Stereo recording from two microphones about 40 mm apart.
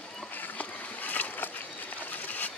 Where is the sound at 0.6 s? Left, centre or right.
Left.